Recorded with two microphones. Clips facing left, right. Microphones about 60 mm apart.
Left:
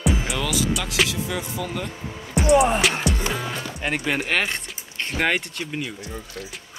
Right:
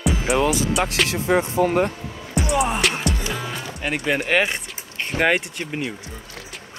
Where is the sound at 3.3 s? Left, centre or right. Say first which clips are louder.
Left 1 dB; centre.